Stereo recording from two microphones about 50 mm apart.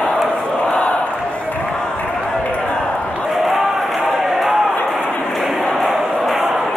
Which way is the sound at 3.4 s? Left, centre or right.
Centre.